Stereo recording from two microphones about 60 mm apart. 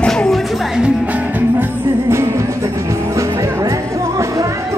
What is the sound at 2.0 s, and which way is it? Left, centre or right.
Music, right.